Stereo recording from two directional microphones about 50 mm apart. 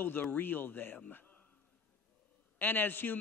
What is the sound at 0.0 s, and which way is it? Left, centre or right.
Speech, left.